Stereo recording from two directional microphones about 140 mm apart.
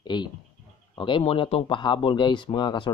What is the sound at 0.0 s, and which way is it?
Speech, 30° left (ahead or behind).